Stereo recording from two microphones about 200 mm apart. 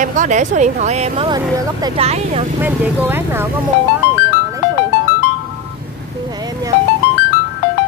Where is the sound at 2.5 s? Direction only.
10° right (ahead or behind).